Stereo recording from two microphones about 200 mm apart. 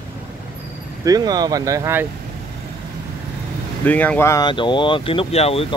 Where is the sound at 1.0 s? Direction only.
20° right (ahead or behind).